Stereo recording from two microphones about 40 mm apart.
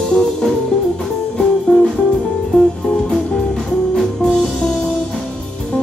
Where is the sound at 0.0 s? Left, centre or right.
Centre.